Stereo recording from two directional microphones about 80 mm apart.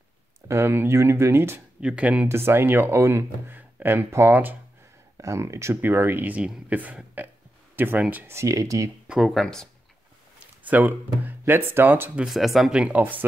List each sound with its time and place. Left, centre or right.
0.5 s speech: right
1.8 s speech: centre
2.2 s speech: right
5.1 s speech: right
8.3 s speech: right
9.0 s speech: centre
10.4 s speech: right
12.3 s speech: centre